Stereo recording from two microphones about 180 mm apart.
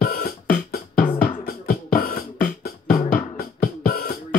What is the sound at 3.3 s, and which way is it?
Music, 55° left (ahead or behind).